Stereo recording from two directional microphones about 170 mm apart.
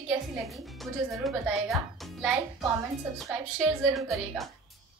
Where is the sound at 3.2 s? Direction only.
Centre (ahead or behind).